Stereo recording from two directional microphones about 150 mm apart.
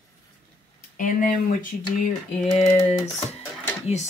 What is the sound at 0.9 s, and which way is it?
Speech, 65° left (ahead or behind).